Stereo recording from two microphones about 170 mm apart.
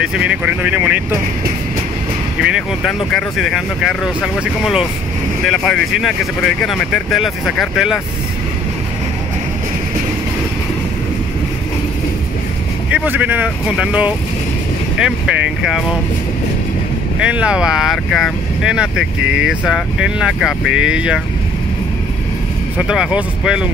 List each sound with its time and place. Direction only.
0.0 s speech: 5° right (ahead or behind)
2.4 s speech: centre (ahead or behind)
12.9 s speech: 10° right (ahead or behind)
17.2 s speech: 5° right (ahead or behind)
22.8 s speech: 5° right (ahead or behind)